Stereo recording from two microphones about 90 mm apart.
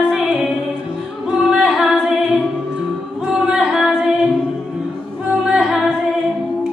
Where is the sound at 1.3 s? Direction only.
5° right (ahead or behind).